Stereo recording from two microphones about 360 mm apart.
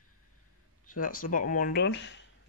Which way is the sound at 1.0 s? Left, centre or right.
Left.